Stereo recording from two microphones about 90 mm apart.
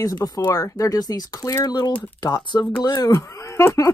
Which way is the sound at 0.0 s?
45° left (ahead or behind).